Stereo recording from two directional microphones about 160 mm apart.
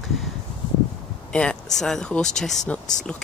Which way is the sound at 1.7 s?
Centre (ahead or behind).